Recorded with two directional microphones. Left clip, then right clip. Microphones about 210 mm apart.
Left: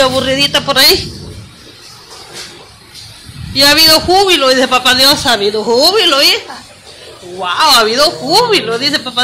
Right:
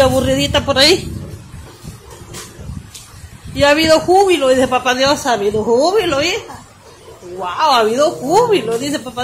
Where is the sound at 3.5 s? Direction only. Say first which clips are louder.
Left 4 dB; 5° right (ahead or behind).